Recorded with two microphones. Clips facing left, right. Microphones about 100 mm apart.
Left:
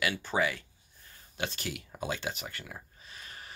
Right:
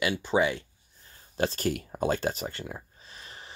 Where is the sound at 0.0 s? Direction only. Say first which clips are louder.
Right 5 dB; 20° right (ahead or behind).